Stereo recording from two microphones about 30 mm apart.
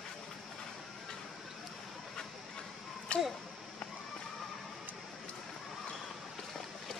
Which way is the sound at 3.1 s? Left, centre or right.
Left.